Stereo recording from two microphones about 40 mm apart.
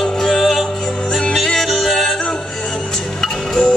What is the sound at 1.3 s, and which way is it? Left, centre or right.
Music, centre.